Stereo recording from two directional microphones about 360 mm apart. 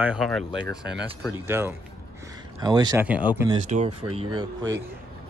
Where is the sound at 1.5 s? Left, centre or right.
Centre.